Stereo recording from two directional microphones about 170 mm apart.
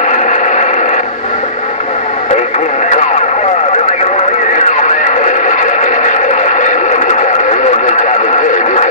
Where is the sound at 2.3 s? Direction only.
45° left (ahead or behind).